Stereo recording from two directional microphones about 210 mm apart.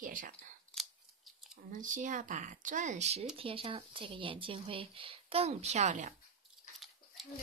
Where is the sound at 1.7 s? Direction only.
40° right (ahead or behind).